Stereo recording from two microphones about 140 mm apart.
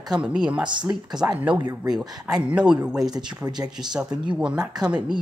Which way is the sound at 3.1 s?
30° right (ahead or behind).